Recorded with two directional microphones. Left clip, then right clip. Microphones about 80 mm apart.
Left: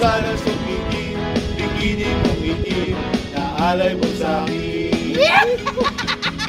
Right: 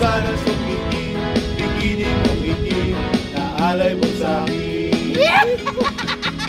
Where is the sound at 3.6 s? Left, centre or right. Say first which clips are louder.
Even; left.